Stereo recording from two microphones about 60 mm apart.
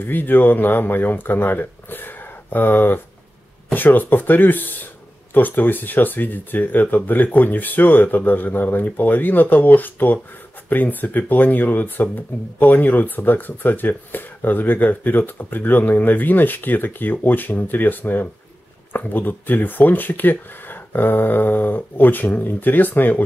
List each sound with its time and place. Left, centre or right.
0.0 s speech: left